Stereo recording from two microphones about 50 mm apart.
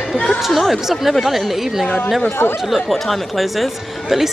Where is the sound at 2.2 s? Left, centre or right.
Left.